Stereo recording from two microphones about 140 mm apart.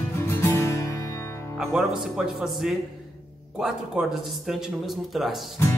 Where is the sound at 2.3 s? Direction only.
Centre (ahead or behind).